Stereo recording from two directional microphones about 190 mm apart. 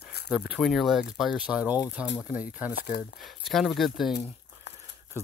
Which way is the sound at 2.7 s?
55° left (ahead or behind).